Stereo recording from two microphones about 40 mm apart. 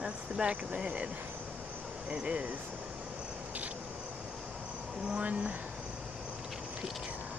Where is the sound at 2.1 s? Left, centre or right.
Right.